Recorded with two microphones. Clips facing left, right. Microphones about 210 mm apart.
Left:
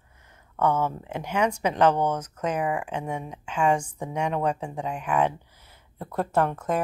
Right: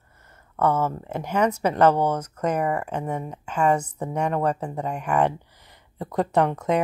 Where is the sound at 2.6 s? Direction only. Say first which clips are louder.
Right 2 dB; 10° left (ahead or behind).